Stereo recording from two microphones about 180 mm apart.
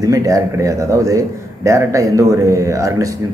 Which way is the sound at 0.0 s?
20° right (ahead or behind).